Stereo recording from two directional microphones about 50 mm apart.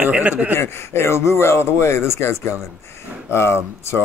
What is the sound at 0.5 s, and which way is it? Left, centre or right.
Speech, left.